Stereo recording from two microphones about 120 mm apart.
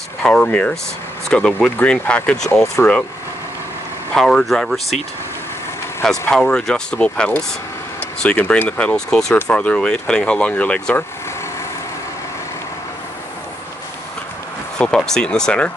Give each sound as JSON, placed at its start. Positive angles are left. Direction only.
{"t": 0.2, "sound": "speech", "side_deg": 10}
{"t": 2.6, "sound": "speech", "side_deg": 25}
{"t": 4.1, "sound": "speech", "side_deg": 5}
{"t": 6.3, "sound": "speech", "side_deg": 5}
{"t": 14.8, "sound": "speech", "side_deg": 5}